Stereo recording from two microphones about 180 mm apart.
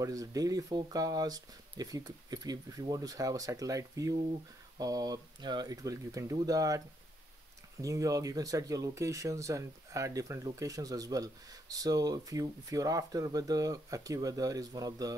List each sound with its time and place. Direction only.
0.0 s speech: 20° right (ahead or behind)
7.8 s speech: 20° right (ahead or behind)